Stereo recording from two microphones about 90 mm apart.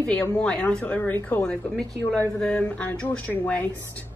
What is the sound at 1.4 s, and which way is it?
A woman's voice, 10° left (ahead or behind).